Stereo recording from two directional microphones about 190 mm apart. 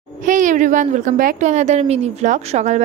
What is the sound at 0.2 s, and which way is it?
A woman's voice, 40° right (ahead or behind).